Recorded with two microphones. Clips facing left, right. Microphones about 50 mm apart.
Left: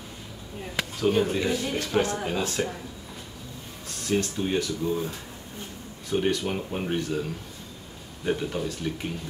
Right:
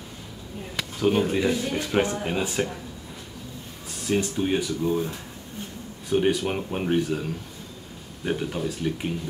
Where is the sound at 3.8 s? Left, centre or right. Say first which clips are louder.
Right 1 dB; centre.